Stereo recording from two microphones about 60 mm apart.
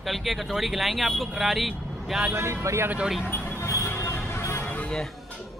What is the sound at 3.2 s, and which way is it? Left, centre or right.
Speech, left.